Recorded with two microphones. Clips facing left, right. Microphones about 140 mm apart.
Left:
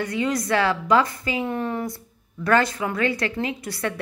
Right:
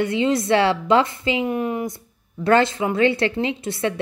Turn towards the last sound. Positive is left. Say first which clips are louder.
# right 4 dB
turn(degrees=-25)  # may be behind; listen again after turning